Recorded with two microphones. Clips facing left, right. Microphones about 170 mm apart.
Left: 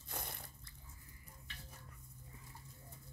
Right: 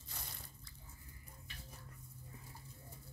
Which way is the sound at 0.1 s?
55° left (ahead or behind).